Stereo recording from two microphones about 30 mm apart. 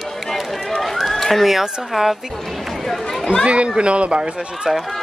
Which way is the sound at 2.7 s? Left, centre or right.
Centre.